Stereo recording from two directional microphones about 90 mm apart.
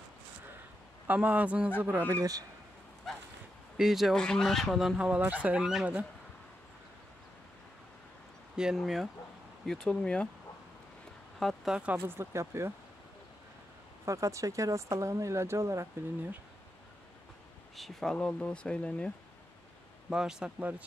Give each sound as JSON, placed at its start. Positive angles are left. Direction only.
{"t": 1.0, "sound": "a man's voice", "side_deg": -20}
{"t": 2.0, "sound": "speech", "side_deg": -35}
{"t": 3.7, "sound": "speech", "side_deg": -5}
{"t": 4.2, "sound": "speech", "side_deg": 5}
{"t": 8.5, "sound": "speech", "side_deg": -5}
{"t": 9.7, "sound": "speech", "side_deg": 10}
{"t": 11.3, "sound": "speech", "side_deg": 0}
{"t": 11.7, "sound": "a man's voice", "side_deg": -15}
{"t": 12.1, "sound": "speech", "side_deg": -30}
{"t": 14.0, "sound": "speech", "side_deg": -35}
{"t": 17.7, "sound": "speech", "side_deg": 0}
{"t": 18.1, "sound": "speech", "side_deg": 10}
{"t": 20.1, "sound": "a man's voice", "side_deg": -5}